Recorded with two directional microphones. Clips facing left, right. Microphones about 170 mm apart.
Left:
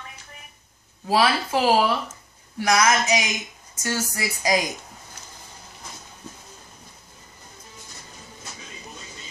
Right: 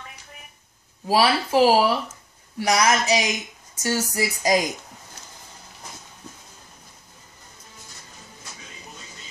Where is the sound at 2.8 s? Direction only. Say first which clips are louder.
Right 3 dB; 35° right (ahead or behind).